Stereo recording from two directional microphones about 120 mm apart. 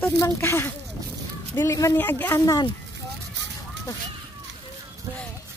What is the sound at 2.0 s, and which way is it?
Speech, 15° left (ahead or behind).